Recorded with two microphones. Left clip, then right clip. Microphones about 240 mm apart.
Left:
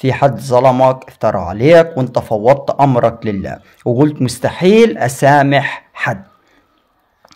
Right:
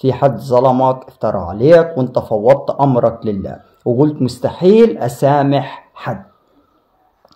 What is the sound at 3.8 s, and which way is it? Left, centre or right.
Speech, left.